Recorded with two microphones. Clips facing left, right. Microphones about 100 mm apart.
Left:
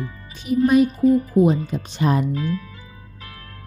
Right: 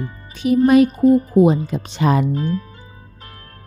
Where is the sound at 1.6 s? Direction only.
85° right.